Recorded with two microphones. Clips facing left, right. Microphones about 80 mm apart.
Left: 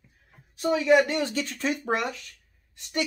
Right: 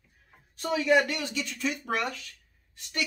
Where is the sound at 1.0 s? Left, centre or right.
Left.